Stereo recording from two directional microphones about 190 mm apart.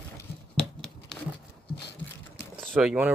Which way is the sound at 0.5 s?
5° left (ahead or behind).